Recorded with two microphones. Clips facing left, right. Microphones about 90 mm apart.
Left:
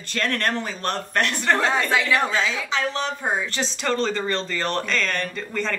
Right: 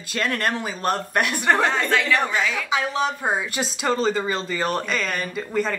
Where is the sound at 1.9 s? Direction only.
15° left (ahead or behind).